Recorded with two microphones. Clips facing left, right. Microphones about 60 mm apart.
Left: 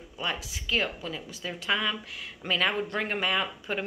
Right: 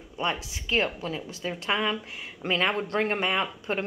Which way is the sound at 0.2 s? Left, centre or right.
Right.